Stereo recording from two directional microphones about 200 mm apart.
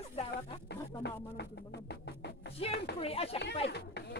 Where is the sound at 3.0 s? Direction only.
30° left (ahead or behind).